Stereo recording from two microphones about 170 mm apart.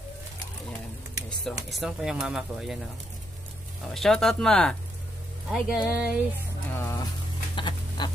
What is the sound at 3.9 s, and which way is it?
Speech, centre (ahead or behind).